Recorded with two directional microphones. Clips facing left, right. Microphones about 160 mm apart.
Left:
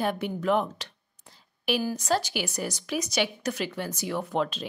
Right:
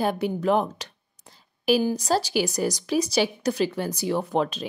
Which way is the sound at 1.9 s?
35° right (ahead or behind).